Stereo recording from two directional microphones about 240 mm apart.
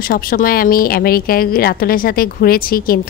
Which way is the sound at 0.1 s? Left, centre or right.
Left.